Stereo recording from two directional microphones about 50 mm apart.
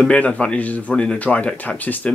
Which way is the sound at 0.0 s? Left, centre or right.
Left.